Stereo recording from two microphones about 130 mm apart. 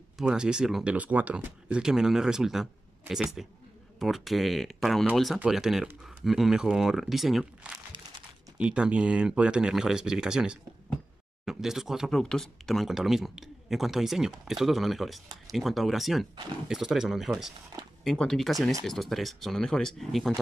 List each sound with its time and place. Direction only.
0.2 s speech: 5° right (ahead or behind)